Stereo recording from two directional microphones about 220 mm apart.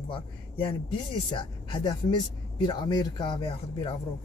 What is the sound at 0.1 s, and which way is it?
Speech, 25° left (ahead or behind).